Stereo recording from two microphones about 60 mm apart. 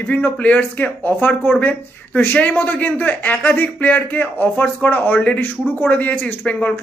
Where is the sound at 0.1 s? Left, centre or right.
Left.